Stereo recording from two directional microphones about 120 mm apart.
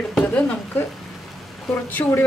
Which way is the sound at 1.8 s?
15° left (ahead or behind).